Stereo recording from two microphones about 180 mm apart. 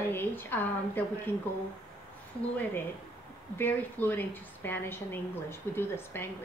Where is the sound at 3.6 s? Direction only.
10° left (ahead or behind).